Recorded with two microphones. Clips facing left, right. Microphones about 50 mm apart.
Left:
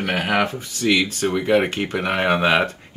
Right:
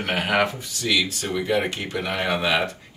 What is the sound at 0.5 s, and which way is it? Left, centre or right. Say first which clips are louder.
Speech: left 4 dB; left.